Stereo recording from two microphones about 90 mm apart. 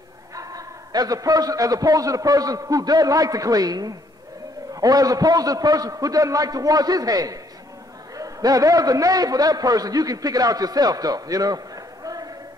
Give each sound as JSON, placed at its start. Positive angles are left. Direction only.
{"t": 0.4, "sound": "a man's voice", "side_deg": -40}